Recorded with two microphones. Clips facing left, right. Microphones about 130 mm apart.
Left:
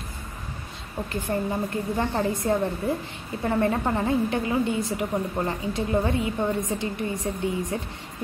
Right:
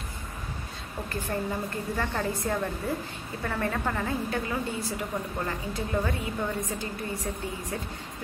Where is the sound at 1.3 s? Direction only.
20° left (ahead or behind).